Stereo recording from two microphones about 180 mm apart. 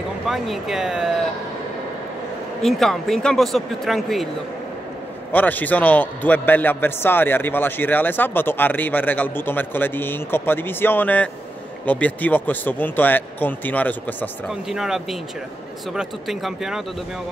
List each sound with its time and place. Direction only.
0.3 s speech: centre (ahead or behind)
2.6 s speech: centre (ahead or behind)
5.3 s a man's voice: 10° left (ahead or behind)
14.5 s speech: centre (ahead or behind)